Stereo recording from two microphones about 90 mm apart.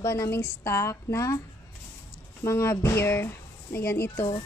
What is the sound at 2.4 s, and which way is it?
Speech, 30° left (ahead or behind).